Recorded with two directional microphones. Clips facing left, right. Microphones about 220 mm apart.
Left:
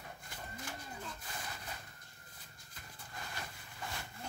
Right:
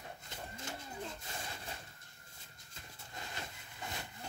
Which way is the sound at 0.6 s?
25° right (ahead or behind).